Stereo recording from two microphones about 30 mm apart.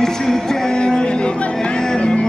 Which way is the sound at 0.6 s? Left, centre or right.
Left.